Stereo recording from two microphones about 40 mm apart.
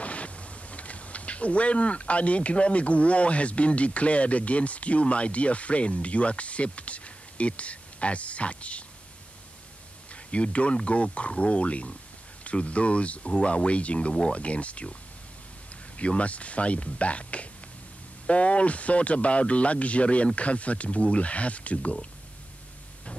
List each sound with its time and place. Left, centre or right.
0.0 s speech: left
10.1 s speech: left